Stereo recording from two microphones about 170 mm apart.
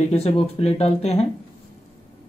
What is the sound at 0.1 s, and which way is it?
Speech, 35° left (ahead or behind).